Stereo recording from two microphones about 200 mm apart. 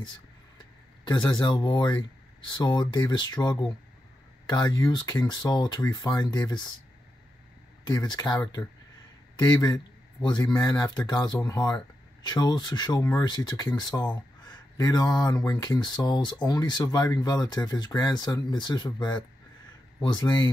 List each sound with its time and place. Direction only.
0.6 s speech: 20° left (ahead or behind)
7.8 s speech: 20° left (ahead or behind)